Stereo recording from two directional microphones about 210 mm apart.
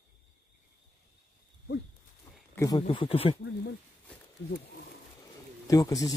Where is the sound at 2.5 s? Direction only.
15° left (ahead or behind).